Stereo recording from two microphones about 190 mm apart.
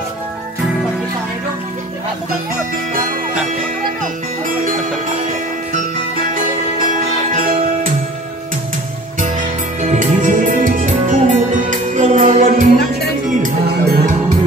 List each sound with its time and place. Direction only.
6.9 s music: 45° right (ahead or behind)
9.8 s music: 40° right (ahead or behind)
13.4 s music: 55° right (ahead or behind)